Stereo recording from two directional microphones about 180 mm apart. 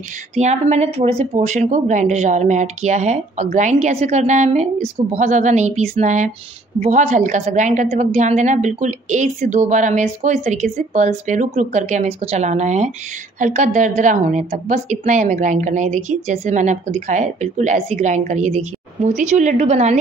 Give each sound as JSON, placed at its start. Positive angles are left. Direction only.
{"t": 0.4, "sound": "a woman's voice", "side_deg": -40}